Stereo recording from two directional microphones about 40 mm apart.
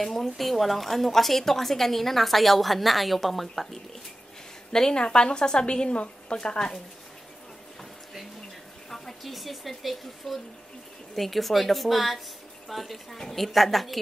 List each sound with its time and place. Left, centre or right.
0.0 s a woman's voice: centre
4.7 s a woman's voice: centre
8.9 s a woman's voice: centre